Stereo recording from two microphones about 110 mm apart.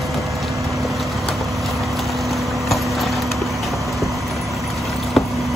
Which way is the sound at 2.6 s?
Centre (ahead or behind).